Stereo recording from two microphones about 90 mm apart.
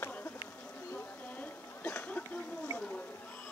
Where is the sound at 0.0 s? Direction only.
20° left (ahead or behind).